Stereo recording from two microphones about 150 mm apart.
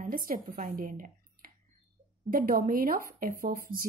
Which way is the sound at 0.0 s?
70° right (ahead or behind).